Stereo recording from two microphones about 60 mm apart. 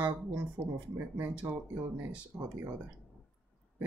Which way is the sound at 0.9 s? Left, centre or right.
Right.